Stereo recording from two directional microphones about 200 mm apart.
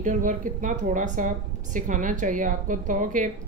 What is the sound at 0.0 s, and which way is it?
Speech, 40° right (ahead or behind).